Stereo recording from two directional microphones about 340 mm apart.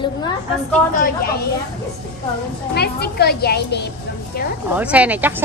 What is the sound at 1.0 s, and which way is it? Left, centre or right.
Speech, left.